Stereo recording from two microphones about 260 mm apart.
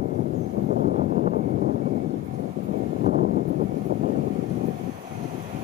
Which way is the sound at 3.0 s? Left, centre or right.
Right.